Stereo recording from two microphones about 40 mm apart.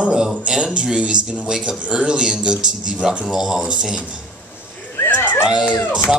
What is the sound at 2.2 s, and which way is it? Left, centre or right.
Speech, centre.